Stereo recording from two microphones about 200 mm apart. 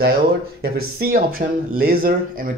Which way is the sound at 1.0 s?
50° right (ahead or behind).